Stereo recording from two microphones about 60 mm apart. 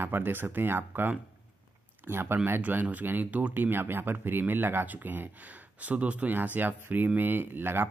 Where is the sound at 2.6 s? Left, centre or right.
Right.